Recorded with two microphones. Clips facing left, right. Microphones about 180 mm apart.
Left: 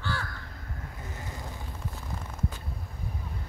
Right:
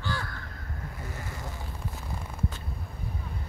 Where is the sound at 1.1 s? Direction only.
20° left (ahead or behind).